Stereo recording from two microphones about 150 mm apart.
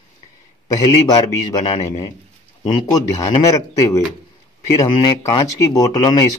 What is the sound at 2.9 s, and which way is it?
A man's voice, 25° left (ahead or behind).